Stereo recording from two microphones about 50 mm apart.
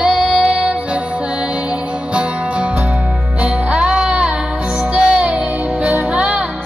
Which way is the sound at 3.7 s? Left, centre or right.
Centre.